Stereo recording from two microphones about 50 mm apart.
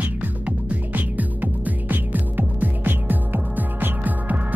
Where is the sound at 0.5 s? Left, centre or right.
Right.